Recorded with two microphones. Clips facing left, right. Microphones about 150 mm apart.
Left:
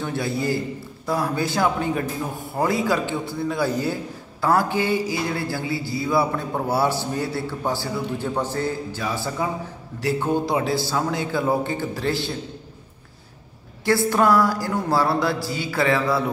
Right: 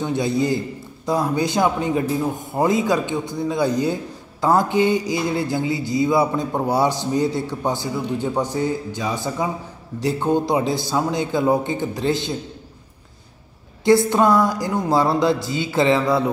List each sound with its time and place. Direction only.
0.0 s a man's voice: 20° right (ahead or behind)
13.8 s a man's voice: 20° right (ahead or behind)